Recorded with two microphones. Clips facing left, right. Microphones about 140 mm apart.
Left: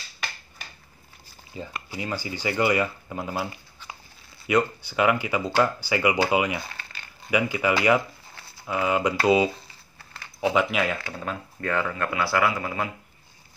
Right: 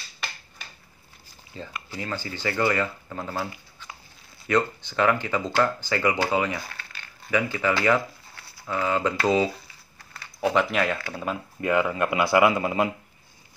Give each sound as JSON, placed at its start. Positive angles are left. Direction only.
{"t": 1.5, "sound": "speech", "side_deg": 15}
{"t": 10.4, "sound": "speech", "side_deg": 5}
{"t": 11.1, "sound": "speech", "side_deg": -10}